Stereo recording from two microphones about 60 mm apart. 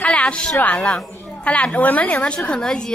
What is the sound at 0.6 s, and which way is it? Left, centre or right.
A woman's voice, centre.